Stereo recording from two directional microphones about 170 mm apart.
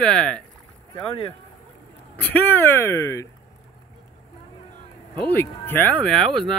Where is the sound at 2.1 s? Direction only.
10° left (ahead or behind).